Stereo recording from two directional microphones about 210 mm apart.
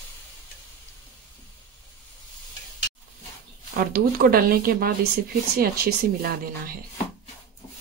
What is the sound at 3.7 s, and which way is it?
Speech, 45° right (ahead or behind).